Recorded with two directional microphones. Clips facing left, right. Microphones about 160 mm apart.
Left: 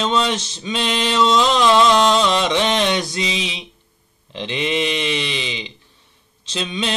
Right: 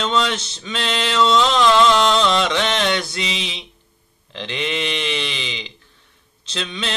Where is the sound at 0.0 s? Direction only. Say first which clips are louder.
Left 1 dB; 15° left (ahead or behind).